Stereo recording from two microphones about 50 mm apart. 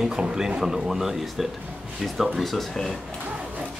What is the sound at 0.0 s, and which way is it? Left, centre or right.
Speech, centre.